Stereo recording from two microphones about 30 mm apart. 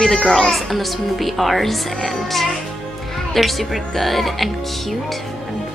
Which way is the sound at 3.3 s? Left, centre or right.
Centre.